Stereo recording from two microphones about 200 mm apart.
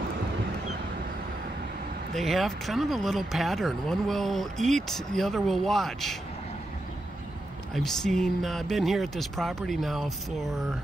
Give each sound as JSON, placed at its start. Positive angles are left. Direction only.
{"t": 2.1, "sound": "speech", "side_deg": 0}
{"t": 7.7, "sound": "speech", "side_deg": 0}